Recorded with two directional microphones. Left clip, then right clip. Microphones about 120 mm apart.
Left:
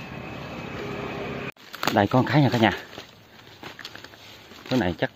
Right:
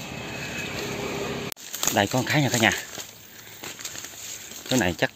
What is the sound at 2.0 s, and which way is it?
Speech, 45° left (ahead or behind).